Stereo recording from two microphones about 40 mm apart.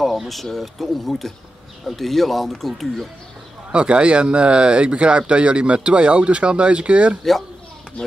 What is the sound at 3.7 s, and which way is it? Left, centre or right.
Speech, right.